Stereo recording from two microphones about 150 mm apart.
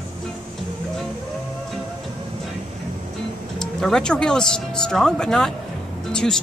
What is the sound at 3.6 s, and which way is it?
Speech, 5° left (ahead or behind).